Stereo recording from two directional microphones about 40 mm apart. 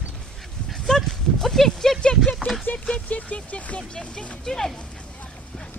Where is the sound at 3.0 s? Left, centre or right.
Left.